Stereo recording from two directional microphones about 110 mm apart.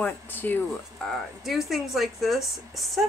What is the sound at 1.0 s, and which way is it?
Speech, centre (ahead or behind).